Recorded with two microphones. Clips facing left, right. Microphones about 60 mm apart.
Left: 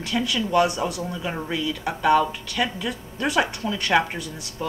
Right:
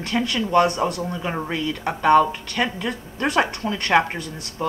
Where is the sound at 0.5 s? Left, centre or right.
Right.